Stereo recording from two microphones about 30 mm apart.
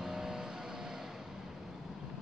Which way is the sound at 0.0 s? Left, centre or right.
Centre.